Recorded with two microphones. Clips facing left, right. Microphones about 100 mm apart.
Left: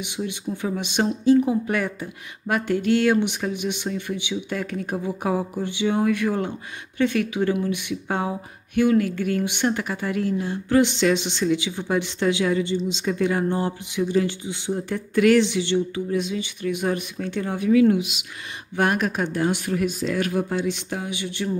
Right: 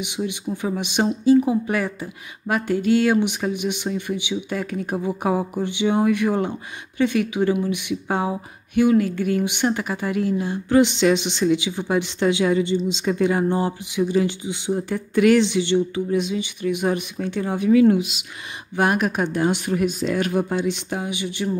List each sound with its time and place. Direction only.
0.0 s speech: 15° right (ahead or behind)
17.6 s speech: 30° right (ahead or behind)
18.8 s speech: 10° right (ahead or behind)